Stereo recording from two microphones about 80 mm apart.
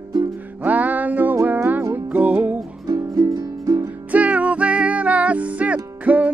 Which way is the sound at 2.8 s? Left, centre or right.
Right.